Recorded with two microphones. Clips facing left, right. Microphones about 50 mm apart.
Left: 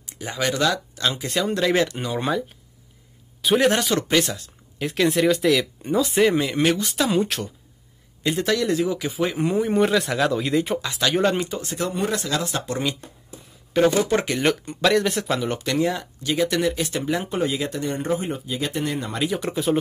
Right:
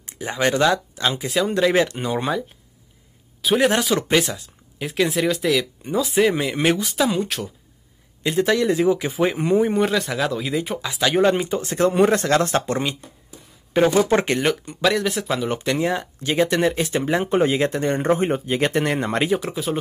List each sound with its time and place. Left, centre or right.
0.3 s speech: right
1.2 s speech: centre; by 2.1 s right
2.1 s speech: centre
3.4 s speech: centre
8.5 s speech: right
9.7 s speech: centre
11.4 s speech: right
13.7 s speech: right
14.0 s speech: right
14.8 s speech: centre
15.5 s speech: right
19.3 s speech: centre